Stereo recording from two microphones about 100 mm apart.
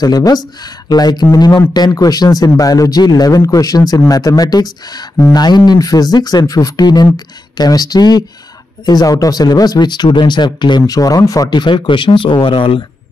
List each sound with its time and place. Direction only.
0.0 s speech: 40° left (ahead or behind); by 12.8 s 65° left (ahead or behind)